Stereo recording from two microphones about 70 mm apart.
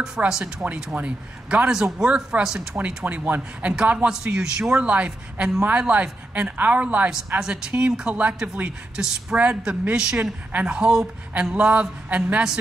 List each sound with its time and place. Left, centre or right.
0.0 s a man's voice: centre
3.3 s a man's voice: right
7.3 s a man's voice: centre